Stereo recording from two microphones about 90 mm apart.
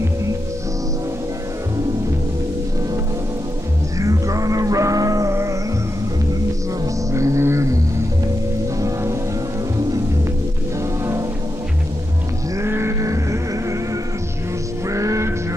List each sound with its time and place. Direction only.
4.0 s music: 40° right (ahead or behind)
6.8 s music: 35° right (ahead or behind)
12.5 s a sound: 30° right (ahead or behind)
14.9 s music: 35° right (ahead or behind)